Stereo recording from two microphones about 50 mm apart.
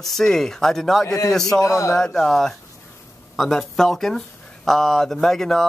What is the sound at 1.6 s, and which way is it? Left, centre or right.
Speech, left.